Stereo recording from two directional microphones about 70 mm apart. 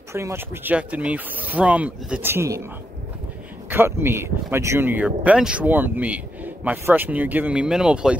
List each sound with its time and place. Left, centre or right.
0.1 s speech: right
0.7 s speech: centre
3.7 s speech: right
4.8 s speech: right
7.6 s speech: centre